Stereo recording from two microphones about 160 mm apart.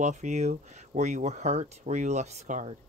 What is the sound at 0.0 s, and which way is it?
Speech, 50° right (ahead or behind).